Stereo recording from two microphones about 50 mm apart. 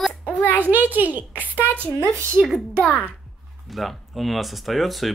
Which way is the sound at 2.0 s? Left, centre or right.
Right.